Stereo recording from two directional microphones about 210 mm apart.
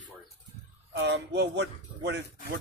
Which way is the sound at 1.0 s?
55° right (ahead or behind).